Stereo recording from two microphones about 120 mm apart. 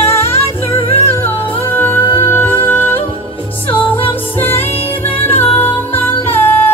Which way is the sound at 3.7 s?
50° left (ahead or behind).